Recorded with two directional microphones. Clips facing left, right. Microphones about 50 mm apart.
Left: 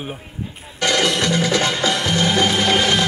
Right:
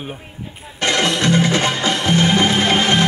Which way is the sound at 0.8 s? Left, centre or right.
Right.